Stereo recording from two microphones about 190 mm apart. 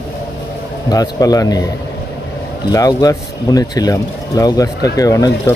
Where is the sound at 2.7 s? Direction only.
20° left (ahead or behind).